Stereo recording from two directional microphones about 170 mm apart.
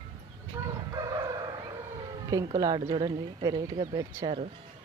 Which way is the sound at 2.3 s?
25° right (ahead or behind).